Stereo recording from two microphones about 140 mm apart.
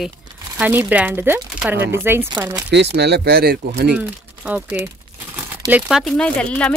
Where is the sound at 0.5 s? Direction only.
15° right (ahead or behind).